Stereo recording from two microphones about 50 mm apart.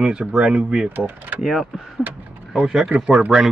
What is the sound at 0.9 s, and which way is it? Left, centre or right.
Speech, right.